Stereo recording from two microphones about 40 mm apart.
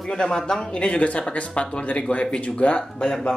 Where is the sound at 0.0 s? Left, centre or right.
Centre.